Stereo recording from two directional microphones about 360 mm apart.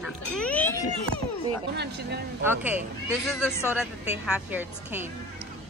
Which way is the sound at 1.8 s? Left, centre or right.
Right.